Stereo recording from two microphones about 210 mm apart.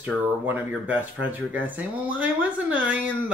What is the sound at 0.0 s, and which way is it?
Speech, 10° right (ahead or behind).